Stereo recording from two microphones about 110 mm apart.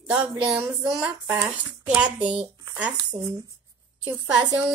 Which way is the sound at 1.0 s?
35° right (ahead or behind).